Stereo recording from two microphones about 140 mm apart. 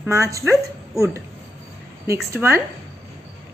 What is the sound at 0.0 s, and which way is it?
A woman's voice, 20° right (ahead or behind).